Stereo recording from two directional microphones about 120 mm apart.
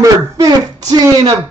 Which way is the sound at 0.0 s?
30° right (ahead or behind).